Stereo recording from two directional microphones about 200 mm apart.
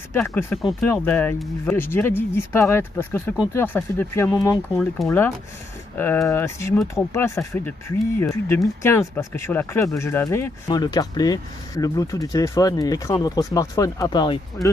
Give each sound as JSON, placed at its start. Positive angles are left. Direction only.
{"t": 0.1, "sound": "speech", "side_deg": 10}